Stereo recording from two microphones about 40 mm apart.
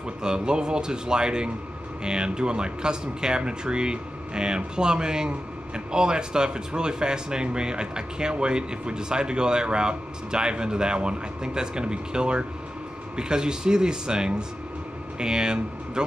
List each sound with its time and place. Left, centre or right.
0.2 s speech: right